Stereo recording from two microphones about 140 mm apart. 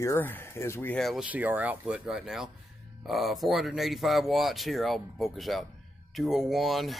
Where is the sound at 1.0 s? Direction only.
Centre (ahead or behind).